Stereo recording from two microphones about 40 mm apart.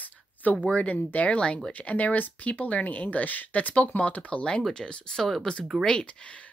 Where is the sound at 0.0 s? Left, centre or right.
Left.